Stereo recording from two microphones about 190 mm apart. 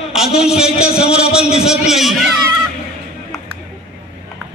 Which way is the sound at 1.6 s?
Centre (ahead or behind).